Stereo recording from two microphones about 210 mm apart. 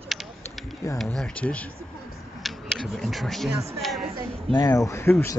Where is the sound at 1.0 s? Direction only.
5° left (ahead or behind).